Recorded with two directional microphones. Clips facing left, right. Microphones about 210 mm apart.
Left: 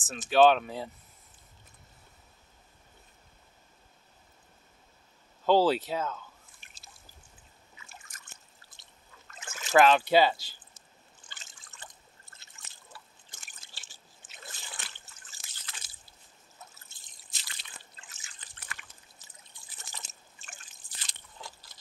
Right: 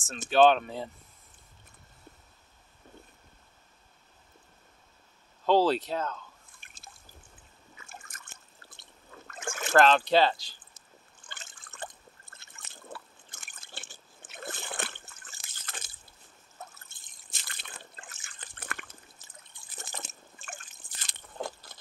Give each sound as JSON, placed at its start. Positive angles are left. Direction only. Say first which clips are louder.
{"t": 0.3, "sound": "speech", "louder": "even", "side_deg": 0}
{"t": 5.4, "sound": "speech", "louder": "even", "side_deg": 5}
{"t": 6.6, "sound": "a sound", "louder": "right 4 dB", "side_deg": -55}
{"t": 7.7, "sound": "drip", "louder": "right 4 dB", "side_deg": -50}
{"t": 9.8, "sound": "speech", "louder": "left 1 dB", "side_deg": 10}
{"t": 11.2, "sound": "water", "louder": "right 6 dB", "side_deg": -55}
{"t": 16.7, "sound": "drip", "louder": "right 1 dB", "side_deg": -55}